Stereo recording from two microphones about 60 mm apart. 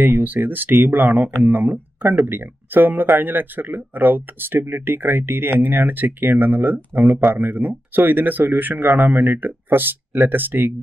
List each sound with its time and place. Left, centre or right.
0.0 s speech: right